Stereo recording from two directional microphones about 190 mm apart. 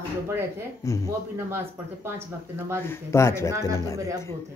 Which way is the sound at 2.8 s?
15° left (ahead or behind).